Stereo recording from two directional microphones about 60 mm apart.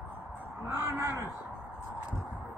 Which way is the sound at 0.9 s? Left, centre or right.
Right.